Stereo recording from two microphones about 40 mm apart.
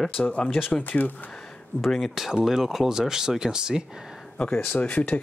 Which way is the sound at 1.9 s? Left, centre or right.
Centre.